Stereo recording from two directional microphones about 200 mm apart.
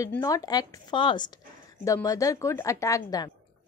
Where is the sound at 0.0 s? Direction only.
15° left (ahead or behind).